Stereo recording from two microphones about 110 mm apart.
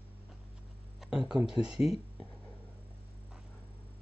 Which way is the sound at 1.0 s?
5° right (ahead or behind).